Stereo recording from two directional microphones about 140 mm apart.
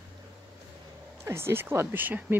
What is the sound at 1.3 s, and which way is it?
Speech, 15° right (ahead or behind).